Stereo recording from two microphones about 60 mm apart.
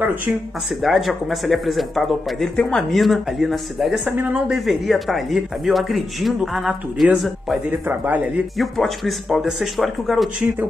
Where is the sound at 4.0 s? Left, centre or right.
Right.